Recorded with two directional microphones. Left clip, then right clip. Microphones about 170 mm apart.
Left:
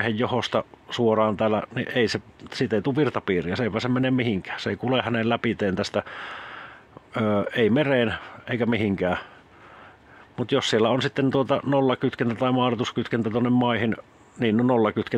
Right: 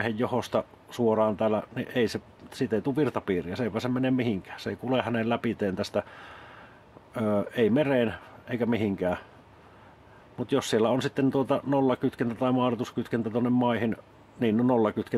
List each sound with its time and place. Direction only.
0.0 s speech: 25° left (ahead or behind)
10.3 s speech: 25° left (ahead or behind)